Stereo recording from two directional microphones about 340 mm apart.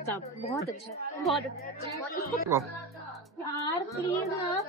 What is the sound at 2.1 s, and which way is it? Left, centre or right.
Speech, left.